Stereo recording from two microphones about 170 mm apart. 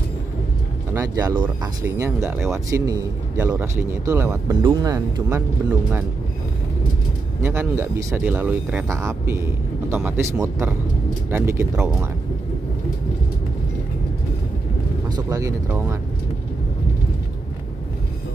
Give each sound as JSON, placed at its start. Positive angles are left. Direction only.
{"t": 0.9, "sound": "speech", "side_deg": -20}
{"t": 7.4, "sound": "speech", "side_deg": -15}
{"t": 15.0, "sound": "speech", "side_deg": -20}